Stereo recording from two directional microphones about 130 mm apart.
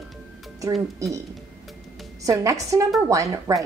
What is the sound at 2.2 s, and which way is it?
Speech, 25° right (ahead or behind).